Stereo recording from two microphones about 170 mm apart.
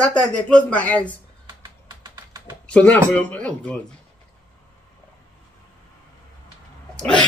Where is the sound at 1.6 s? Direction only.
25° right (ahead or behind).